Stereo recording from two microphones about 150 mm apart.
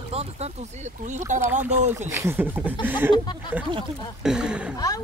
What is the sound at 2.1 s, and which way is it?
Speech, 15° right (ahead or behind).